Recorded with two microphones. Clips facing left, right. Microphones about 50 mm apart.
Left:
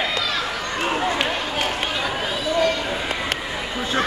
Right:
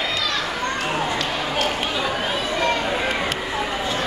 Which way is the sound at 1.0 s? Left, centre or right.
Left.